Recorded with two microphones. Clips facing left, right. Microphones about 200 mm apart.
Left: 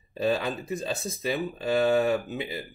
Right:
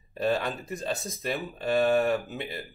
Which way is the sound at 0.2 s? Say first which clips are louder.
Left 1 dB; 10° left (ahead or behind).